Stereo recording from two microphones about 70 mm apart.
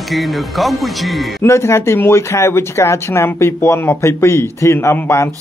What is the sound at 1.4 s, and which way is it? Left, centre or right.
Speech, left.